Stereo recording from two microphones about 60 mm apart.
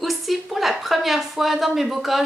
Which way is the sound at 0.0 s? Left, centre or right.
Centre.